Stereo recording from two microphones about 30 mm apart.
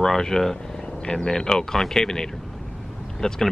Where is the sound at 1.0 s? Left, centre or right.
Left.